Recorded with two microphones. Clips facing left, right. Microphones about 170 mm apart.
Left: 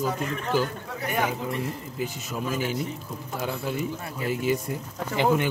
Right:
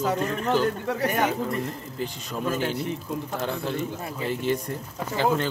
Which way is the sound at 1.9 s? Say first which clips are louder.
Even; 5° left (ahead or behind).